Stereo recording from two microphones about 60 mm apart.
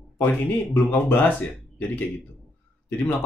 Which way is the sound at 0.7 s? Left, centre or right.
Left.